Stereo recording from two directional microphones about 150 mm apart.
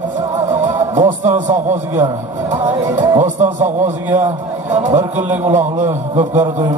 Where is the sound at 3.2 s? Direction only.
55° right (ahead or behind).